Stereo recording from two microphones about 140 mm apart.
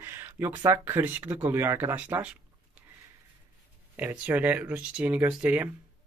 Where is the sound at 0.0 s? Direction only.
15° right (ahead or behind).